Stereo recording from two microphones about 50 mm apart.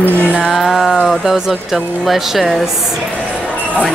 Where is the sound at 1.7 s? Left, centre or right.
Centre.